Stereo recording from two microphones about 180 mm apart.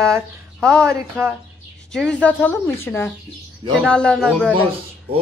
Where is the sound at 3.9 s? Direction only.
5° left (ahead or behind).